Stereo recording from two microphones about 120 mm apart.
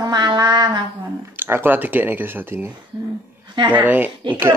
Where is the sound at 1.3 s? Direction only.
20° right (ahead or behind).